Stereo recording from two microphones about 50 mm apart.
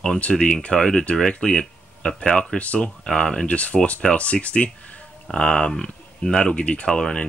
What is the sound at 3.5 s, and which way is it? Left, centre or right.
Speech, left.